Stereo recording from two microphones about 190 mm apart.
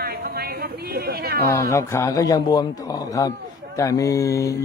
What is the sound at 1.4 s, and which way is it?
A man's voice, 15° left (ahead or behind).